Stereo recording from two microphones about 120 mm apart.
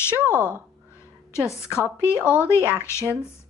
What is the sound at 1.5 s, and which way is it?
A woman's voice, 20° left (ahead or behind).